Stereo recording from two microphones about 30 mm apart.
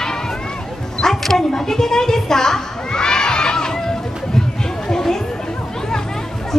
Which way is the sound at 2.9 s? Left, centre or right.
Left.